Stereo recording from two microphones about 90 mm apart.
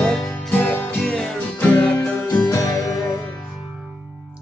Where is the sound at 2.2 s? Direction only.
40° left (ahead or behind).